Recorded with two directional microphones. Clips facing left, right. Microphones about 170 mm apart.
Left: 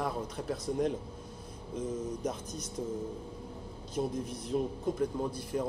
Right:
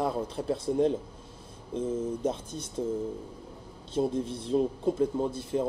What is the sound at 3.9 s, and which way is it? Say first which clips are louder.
Speech: right 6 dB; 25° right (ahead or behind).